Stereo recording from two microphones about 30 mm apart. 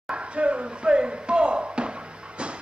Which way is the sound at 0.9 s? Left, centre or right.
Right.